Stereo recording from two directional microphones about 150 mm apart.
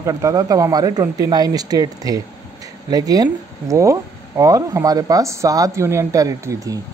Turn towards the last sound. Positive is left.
turn(degrees=-20)  # may be behind; listen again after turning